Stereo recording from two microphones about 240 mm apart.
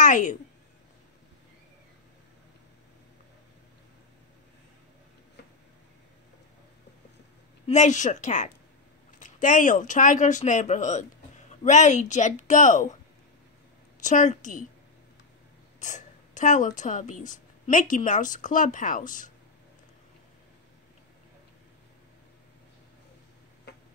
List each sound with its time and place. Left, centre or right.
0.0 s a woman's voice: left
7.6 s speech: left
14.0 s speech: left
15.8 s a woman's voice: left